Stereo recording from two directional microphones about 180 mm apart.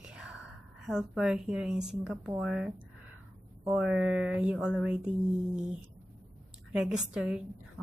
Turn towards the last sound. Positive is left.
turn(degrees=-5)  # may be behind; listen again after turning